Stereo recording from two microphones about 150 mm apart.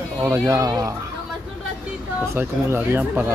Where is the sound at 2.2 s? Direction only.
15° right (ahead or behind).